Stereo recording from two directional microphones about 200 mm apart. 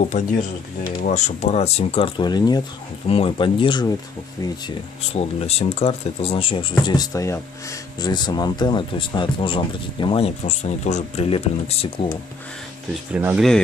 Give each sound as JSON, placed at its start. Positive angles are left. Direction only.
{"t": 0.1, "sound": "speech", "side_deg": 35}
{"t": 13.1, "sound": "speech", "side_deg": -10}